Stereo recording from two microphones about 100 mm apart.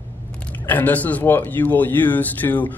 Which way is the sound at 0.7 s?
15° left (ahead or behind).